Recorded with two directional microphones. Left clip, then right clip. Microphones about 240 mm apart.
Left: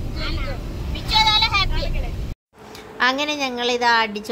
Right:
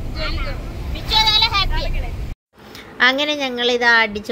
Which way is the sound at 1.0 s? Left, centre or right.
Centre.